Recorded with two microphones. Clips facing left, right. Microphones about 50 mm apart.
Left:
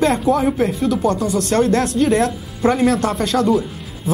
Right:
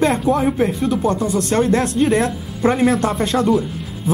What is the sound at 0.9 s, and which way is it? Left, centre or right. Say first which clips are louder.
Speech: even; centre.